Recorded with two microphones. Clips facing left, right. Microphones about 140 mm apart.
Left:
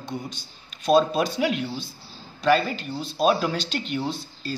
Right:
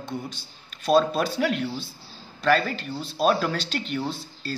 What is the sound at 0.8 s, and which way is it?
Speech, 5° right (ahead or behind).